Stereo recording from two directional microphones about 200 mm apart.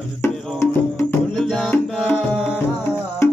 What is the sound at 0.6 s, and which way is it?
Music, 10° left (ahead or behind).